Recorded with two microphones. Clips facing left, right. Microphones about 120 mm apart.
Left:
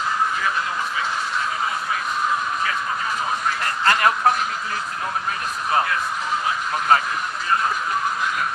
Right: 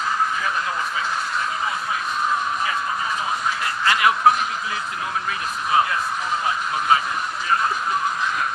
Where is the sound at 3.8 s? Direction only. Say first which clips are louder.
Left 1 dB; 45° left (ahead or behind).